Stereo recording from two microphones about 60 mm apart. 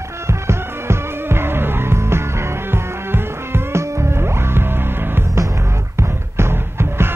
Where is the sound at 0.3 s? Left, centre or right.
Right.